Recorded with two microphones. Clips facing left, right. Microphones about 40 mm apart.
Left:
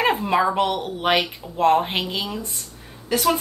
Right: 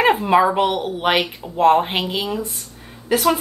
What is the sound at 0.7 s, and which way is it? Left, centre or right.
Speech, right.